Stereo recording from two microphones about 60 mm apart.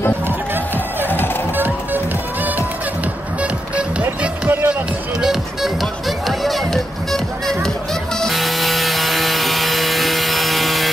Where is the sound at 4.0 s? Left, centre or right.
Right.